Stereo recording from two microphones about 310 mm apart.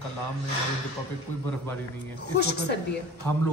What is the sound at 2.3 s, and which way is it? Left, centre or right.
Speech, left.